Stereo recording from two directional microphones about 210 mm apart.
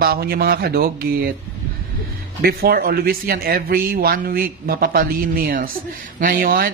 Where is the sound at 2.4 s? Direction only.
45° right (ahead or behind).